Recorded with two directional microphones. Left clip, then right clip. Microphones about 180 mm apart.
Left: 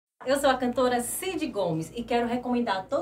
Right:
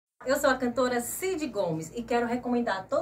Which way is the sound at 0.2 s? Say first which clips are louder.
Left 2 dB; centre (ahead or behind).